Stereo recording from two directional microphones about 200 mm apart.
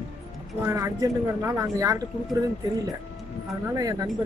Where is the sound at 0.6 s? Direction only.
15° right (ahead or behind).